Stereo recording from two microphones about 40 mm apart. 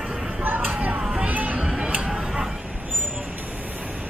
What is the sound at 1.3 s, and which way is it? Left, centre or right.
Music, right.